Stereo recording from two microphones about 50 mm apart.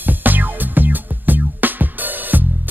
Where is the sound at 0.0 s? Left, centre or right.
Right.